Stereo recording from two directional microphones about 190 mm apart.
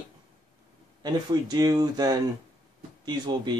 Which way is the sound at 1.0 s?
20° right (ahead or behind).